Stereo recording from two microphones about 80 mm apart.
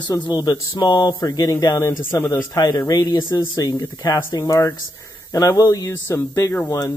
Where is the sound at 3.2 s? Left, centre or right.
Left.